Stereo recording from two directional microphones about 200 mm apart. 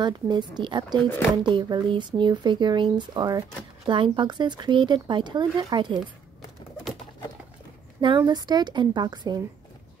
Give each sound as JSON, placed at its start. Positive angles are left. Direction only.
{"t": 0.0, "sound": "speech", "side_deg": -20}
{"t": 8.2, "sound": "speech", "side_deg": -20}